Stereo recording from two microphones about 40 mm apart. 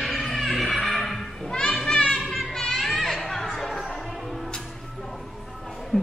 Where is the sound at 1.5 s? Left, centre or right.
Left.